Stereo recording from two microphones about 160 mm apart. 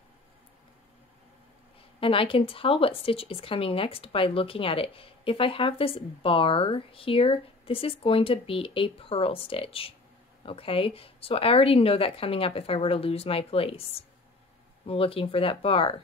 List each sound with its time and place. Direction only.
2.0 s speech: 35° left (ahead or behind)